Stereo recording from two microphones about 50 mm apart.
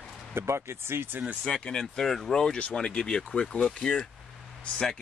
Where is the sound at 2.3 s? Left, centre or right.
Centre.